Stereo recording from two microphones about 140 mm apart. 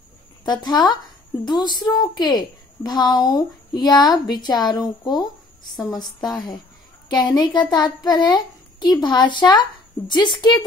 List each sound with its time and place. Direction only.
0.5 s a woman's voice: 30° left (ahead or behind)